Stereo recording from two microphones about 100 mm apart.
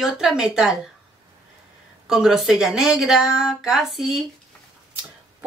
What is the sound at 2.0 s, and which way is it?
Speech, 5° right (ahead or behind).